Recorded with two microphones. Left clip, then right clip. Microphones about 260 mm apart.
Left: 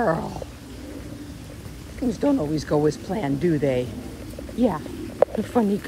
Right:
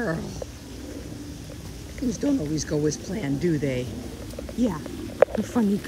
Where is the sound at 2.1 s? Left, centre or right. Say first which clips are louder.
Left 4 dB; centre.